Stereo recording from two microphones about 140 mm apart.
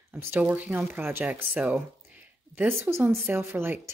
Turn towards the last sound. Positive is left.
turn(degrees=-15)  # may be behind; listen again after turning